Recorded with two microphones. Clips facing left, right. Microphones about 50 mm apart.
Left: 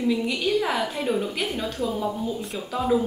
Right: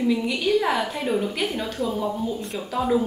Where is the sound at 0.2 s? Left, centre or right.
Centre.